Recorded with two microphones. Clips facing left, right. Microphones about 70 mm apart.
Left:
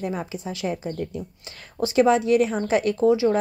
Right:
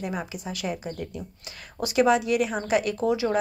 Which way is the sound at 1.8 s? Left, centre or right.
Left.